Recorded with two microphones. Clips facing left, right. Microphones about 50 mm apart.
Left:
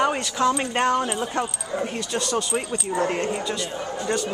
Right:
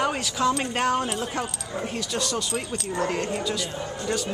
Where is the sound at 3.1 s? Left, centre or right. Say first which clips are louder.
Left 2 dB; centre.